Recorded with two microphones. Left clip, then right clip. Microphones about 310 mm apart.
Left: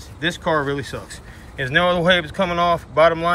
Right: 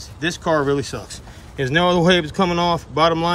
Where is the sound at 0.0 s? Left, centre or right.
Centre.